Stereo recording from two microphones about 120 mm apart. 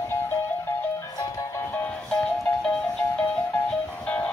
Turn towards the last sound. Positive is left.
turn(degrees=10)  # may be behind; listen again after turning